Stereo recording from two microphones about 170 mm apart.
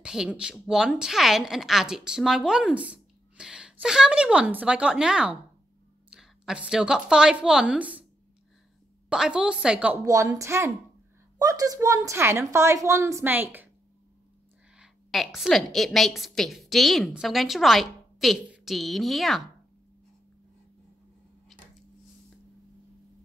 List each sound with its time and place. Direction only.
0.0 s a woman's voice: 5° right (ahead or behind)
9.1 s a woman's voice: 5° right (ahead or behind)
10.0 s a woman's voice: 20° right (ahead or behind)
14.8 s a woman's voice: centre (ahead or behind)